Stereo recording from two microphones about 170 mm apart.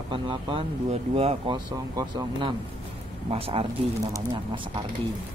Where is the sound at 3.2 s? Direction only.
35° right (ahead or behind).